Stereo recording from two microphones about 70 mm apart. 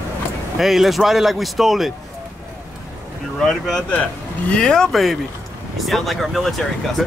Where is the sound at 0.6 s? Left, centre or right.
Centre.